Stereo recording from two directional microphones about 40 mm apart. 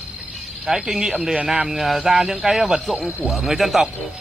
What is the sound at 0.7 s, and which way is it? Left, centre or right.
Speech, centre.